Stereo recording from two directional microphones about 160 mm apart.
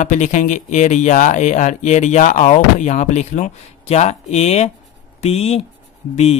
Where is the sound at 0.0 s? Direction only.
50° left (ahead or behind).